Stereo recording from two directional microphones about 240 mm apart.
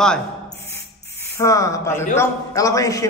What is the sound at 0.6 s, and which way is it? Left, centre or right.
Spray, centre.